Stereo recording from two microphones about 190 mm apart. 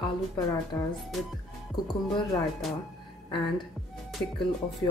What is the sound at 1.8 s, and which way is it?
Speech, 25° left (ahead or behind).